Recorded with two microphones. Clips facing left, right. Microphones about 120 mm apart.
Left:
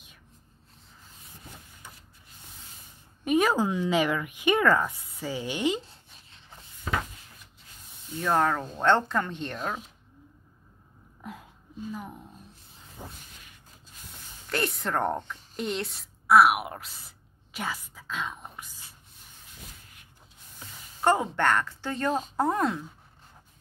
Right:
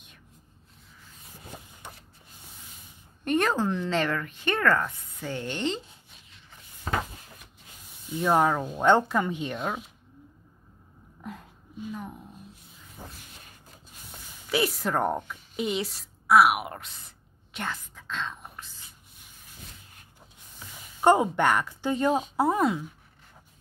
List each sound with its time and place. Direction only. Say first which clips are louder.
1.8 s rub: right 3 dB; 65° right (ahead or behind)
3.3 s speech: left 1 dB; 5° left (ahead or behind)
8.2 s speech: right 2 dB; 10° right (ahead or behind)
11.1 s a sound: right 1 dB; centre (ahead or behind)
11.9 s speech: right 1 dB; 5° left (ahead or behind)
13.0 s a sound: left 1 dB; 15° left (ahead or behind)
14.5 s a woman's voice: right 3 dB; 5° right (ahead or behind); by 18.8 s 10° left (ahead or behind)
21.0 s speech: right 3 dB; 20° right (ahead or behind)